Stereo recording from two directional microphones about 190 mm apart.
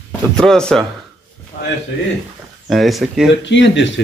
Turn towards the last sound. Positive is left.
turn(degrees=70)  # may be behind; listen again after turning